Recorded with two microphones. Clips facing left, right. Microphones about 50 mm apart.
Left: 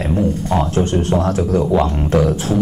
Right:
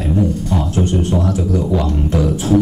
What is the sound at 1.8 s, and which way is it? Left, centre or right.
Speech, left.